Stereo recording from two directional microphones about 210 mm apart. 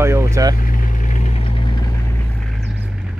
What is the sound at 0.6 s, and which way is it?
Vehicle, 35° left (ahead or behind).